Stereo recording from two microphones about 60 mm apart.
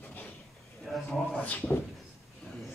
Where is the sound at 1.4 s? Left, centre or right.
Left.